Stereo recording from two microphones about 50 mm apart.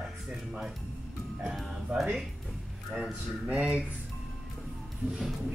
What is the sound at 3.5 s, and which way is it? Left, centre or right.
Speech, right.